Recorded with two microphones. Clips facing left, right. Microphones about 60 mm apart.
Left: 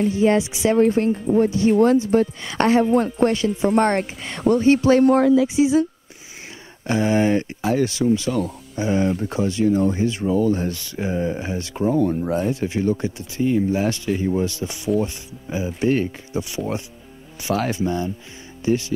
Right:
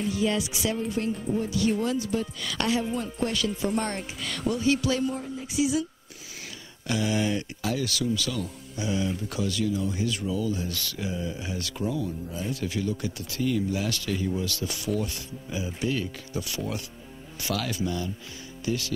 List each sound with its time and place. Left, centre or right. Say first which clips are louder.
0.1 s speech: left 9 dB; left
1.2 s speech: left 8 dB; left
2.4 s speech: left 10 dB; left
3.3 s speech: left 9 dB; left
4.2 s speech: left 7 dB; left
5.0 s speech: left 16 dB; left
5.5 s speech: left 9 dB; left
6.9 s speech: left 8 dB; left
10.7 s speech: left 6 dB; left
11.1 s speech: left 10 dB; left
12.0 s speech: left 13 dB; left
12.4 s speech: left 8 dB; left
16.3 s speech: left 7 dB; left